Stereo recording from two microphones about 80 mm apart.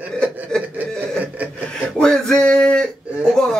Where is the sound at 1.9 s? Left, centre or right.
Centre.